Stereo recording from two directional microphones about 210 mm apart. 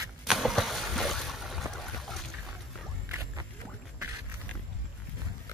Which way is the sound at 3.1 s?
15° right (ahead or behind).